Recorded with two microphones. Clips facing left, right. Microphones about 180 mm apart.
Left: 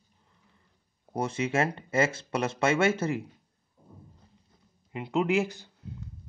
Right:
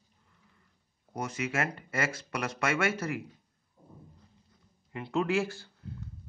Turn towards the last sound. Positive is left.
turn(degrees=20)  # may be behind; listen again after turning